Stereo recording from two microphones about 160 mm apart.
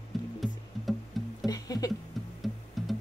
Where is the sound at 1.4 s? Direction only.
25° left (ahead or behind).